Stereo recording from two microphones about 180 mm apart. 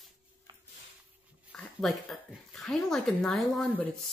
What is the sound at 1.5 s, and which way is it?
Speech, centre (ahead or behind).